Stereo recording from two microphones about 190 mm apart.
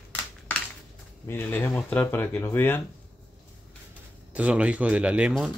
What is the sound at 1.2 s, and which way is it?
Speech, 10° left (ahead or behind).